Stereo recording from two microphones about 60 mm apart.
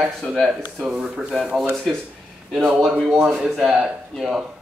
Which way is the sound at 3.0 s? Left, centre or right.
Centre.